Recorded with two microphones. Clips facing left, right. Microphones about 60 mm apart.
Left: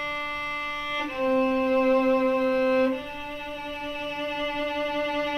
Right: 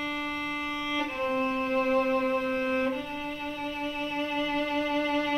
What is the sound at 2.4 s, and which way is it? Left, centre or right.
Music, centre.